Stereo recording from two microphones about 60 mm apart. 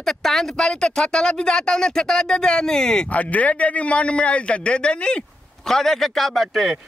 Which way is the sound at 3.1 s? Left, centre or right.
Left.